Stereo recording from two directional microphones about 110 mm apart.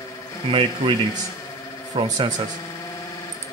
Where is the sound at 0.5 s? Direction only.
50° right (ahead or behind).